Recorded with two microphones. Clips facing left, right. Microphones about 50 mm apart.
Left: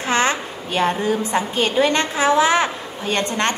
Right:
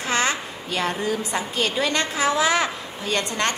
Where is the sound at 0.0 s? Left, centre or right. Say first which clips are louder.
Left 4 dB; left.